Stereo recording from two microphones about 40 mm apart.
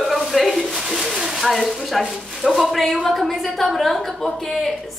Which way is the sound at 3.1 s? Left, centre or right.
Centre.